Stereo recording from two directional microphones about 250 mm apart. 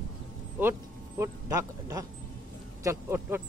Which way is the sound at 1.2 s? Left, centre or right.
Centre.